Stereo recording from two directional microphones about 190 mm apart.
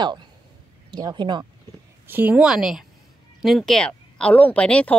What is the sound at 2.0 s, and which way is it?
Speech, 10° right (ahead or behind).